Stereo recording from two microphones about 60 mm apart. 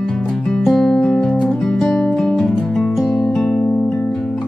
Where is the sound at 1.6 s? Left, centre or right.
Centre.